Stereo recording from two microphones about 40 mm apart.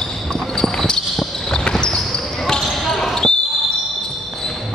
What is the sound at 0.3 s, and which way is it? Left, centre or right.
Basketball bounce, centre.